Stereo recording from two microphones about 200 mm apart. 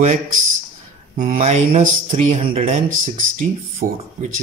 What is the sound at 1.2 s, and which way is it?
Speech, 40° right (ahead or behind).